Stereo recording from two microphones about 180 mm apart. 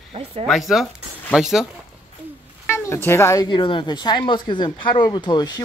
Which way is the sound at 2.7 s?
15° left (ahead or behind).